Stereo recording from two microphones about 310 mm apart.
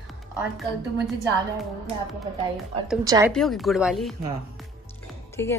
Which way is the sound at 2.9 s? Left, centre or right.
Centre.